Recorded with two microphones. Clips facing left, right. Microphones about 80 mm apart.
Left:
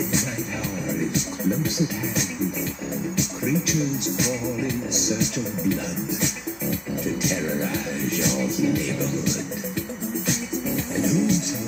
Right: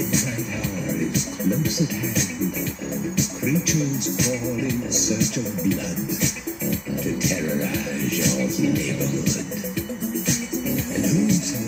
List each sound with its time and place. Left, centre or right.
11.1 s music: left